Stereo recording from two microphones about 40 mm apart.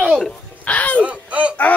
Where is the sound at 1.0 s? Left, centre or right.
Right.